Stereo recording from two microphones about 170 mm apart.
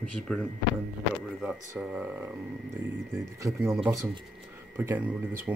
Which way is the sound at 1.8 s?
10° right (ahead or behind).